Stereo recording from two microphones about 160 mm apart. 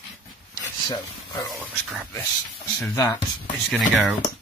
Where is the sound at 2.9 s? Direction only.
20° left (ahead or behind).